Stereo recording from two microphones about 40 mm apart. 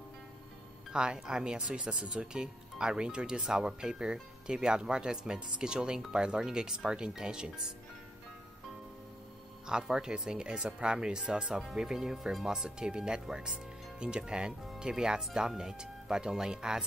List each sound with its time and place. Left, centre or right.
0.9 s speech: right
5.9 s speech: centre
9.7 s speech: centre